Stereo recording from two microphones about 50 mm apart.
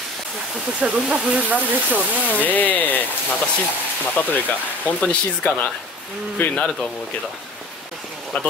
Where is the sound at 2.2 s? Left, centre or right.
Left.